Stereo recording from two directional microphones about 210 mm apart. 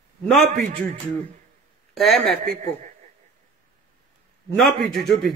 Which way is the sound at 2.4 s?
40° right (ahead or behind).